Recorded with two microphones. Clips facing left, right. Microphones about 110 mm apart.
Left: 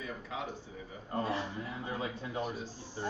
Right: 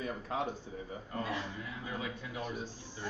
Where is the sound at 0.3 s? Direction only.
45° right (ahead or behind).